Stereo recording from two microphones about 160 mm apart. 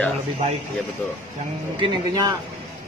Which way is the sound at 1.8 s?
25° right (ahead or behind).